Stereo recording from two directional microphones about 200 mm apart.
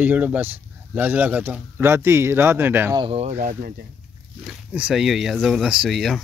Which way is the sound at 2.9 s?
25° right (ahead or behind).